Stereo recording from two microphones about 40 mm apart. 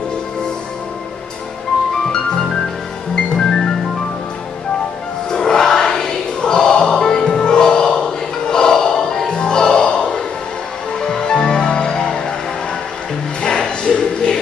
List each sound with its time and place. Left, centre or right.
2.1 s music: centre
5.3 s music: centre
13.4 s music: left